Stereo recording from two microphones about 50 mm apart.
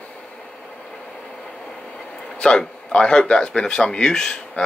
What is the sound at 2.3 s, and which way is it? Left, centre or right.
Speech, centre.